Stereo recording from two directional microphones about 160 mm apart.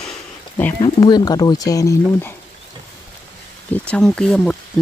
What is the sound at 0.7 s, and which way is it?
Speech, 30° left (ahead or behind).